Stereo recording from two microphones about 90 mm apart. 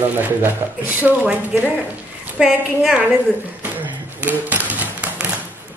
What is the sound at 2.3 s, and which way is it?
Speech, centre (ahead or behind).